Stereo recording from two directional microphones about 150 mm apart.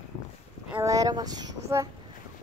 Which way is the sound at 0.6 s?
15° right (ahead or behind).